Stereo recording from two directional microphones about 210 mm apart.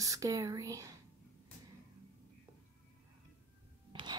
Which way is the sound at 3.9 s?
20° right (ahead or behind).